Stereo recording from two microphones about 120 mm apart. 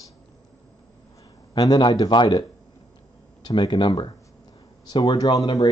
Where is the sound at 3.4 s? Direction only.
40° left (ahead or behind).